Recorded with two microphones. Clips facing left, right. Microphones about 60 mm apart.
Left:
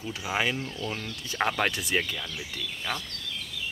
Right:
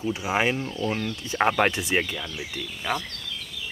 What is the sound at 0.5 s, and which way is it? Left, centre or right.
Speech, centre.